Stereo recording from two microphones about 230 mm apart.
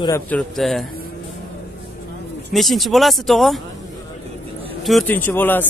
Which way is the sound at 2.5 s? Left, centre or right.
Centre.